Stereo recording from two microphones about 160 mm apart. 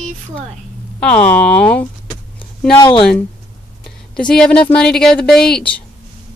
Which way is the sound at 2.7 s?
30° left (ahead or behind).